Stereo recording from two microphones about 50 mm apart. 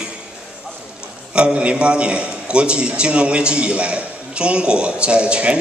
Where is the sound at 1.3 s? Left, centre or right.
Right.